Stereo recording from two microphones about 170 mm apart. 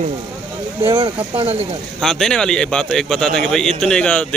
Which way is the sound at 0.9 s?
30° right (ahead or behind).